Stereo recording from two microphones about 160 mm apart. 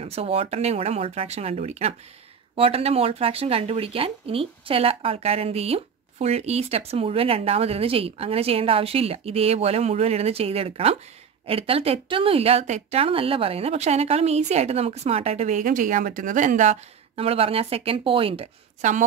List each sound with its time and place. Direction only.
0.0 s speech: 40° right (ahead or behind)